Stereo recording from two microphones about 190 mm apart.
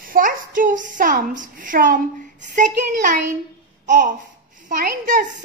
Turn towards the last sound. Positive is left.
turn(degrees=-45)  # may be behind; listen again after turning